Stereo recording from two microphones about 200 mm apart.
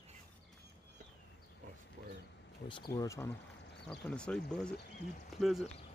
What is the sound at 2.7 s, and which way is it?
Speech, 20° left (ahead or behind).